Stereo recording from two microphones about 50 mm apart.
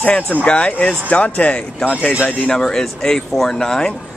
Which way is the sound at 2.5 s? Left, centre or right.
Centre.